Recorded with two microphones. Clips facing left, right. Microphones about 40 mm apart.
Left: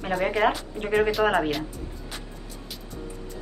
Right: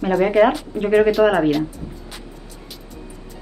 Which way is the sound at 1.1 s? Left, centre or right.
Centre.